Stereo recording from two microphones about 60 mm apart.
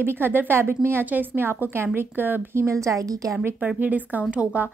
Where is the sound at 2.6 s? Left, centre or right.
Right.